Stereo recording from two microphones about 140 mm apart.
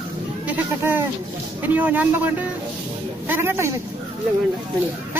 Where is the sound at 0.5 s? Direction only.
15° right (ahead or behind).